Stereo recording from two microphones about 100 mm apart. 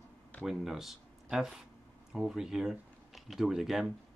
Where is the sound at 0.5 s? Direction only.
5° right (ahead or behind).